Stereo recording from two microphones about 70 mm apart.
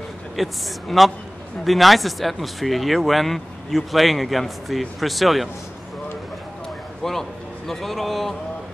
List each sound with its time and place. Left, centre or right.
0.4 s speech: centre
7.0 s speech: centre